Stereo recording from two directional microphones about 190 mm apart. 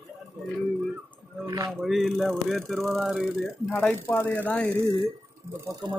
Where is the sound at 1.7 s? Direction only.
Centre (ahead or behind).